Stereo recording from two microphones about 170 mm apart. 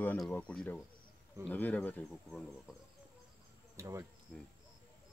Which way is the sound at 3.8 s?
20° right (ahead or behind).